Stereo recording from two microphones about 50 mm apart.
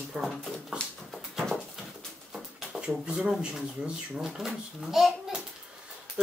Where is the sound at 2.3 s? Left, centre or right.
Centre.